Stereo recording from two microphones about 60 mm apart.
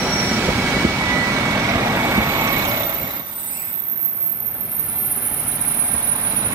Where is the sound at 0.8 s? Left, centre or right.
Right.